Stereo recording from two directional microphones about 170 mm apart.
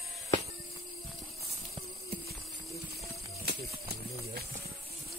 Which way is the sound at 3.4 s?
70° right (ahead or behind).